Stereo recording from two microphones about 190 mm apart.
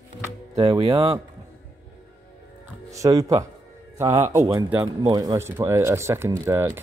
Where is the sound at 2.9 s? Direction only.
20° right (ahead or behind).